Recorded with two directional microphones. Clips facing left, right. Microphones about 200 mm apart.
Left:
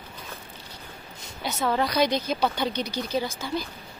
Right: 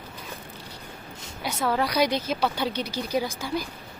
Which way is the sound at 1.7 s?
10° right (ahead or behind).